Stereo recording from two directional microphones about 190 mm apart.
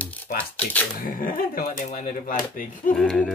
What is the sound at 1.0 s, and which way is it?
Speech, 45° left (ahead or behind).